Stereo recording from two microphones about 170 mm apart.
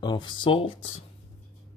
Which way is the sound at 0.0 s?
25° left (ahead or behind).